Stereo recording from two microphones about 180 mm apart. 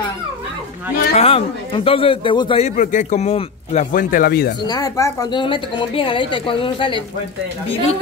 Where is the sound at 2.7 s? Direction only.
45° left (ahead or behind).